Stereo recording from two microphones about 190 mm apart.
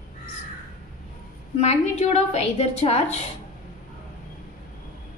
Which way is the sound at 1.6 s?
35° left (ahead or behind).